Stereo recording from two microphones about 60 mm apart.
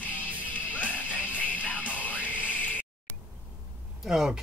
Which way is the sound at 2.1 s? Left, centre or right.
Right.